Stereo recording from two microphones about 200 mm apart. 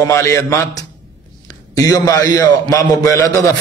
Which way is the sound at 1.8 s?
20° left (ahead or behind).